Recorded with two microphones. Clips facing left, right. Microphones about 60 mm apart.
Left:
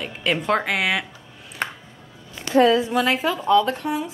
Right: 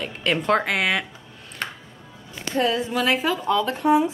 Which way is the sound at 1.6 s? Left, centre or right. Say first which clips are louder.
Left 3 dB; left.